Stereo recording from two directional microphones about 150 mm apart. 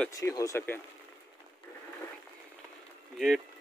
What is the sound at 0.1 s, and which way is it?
Speech, 25° left (ahead or behind).